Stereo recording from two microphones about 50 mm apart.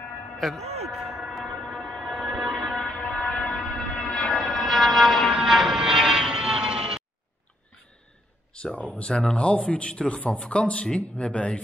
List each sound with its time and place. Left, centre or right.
0.4 s a sound: centre; by 4.3 s left
4.3 s vehicle: centre
8.5 s speech: centre